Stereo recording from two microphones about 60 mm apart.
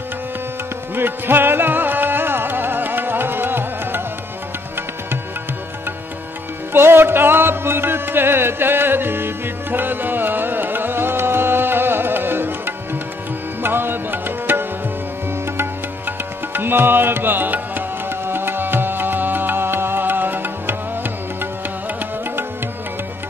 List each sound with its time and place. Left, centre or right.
0.9 s music: right
6.7 s music: right